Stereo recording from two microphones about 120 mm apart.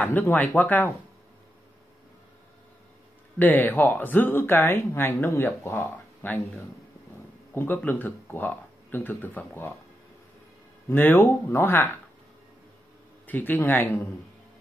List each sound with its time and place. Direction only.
0.0 s speech: 15° left (ahead or behind)
3.3 s speech: 15° left (ahead or behind)
7.5 s speech: 15° left (ahead or behind)
10.9 s speech: 20° left (ahead or behind)
13.3 s speech: 15° left (ahead or behind)